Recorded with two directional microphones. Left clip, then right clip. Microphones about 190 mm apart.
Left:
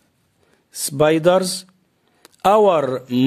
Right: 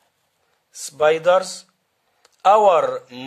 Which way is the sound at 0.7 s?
30° left (ahead or behind).